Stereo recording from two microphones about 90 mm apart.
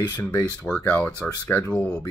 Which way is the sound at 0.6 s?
10° left (ahead or behind).